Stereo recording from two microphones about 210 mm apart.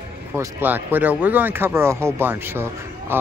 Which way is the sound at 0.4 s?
10° right (ahead or behind).